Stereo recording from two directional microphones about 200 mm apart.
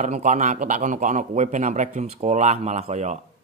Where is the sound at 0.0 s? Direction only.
35° right (ahead or behind).